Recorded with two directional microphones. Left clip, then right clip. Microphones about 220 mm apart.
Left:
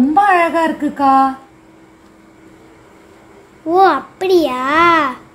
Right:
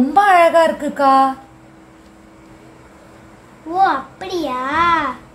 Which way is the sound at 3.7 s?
40° left (ahead or behind).